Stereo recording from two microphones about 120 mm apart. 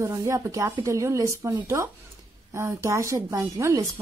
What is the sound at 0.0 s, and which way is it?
Speech, 25° right (ahead or behind).